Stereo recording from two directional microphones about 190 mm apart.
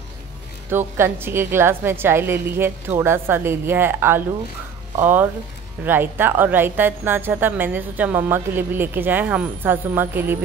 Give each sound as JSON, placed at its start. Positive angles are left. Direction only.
{"t": 0.7, "sound": "a woman's voice", "side_deg": -10}